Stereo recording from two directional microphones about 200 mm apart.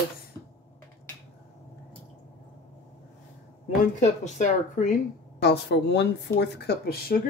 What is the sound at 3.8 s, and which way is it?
Speech, 35° left (ahead or behind).